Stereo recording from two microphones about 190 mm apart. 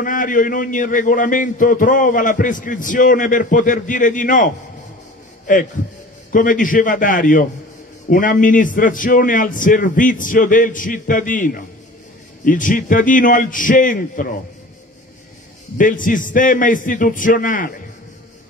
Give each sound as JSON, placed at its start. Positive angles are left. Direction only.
{"t": 0.0, "sound": "a man's voice", "side_deg": 45}
{"t": 6.3, "sound": "a man's voice", "side_deg": 45}
{"t": 15.8, "sound": "a man's voice", "side_deg": 45}